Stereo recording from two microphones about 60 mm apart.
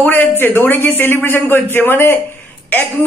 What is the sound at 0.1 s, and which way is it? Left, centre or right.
A woman's voice, left.